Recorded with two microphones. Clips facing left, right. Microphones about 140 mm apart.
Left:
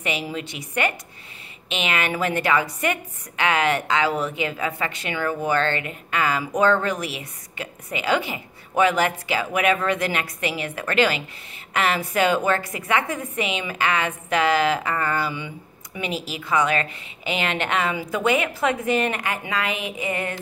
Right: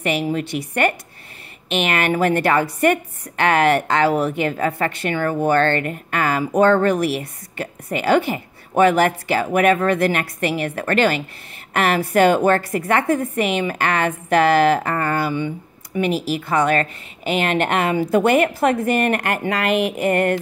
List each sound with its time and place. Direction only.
0.0 s a woman's voice: 50° right (ahead or behind)